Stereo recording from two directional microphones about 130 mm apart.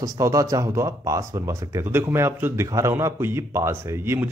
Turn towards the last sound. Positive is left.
turn(degrees=-15)  # may be behind; listen again after turning